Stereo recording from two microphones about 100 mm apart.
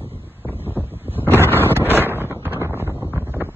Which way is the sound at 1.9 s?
20° right (ahead or behind).